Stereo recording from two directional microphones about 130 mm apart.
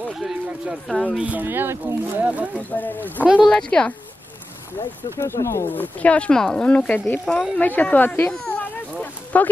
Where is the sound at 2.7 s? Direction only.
15° left (ahead or behind).